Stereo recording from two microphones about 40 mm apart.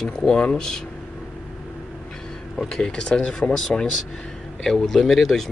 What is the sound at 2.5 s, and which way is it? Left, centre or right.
Speech, left.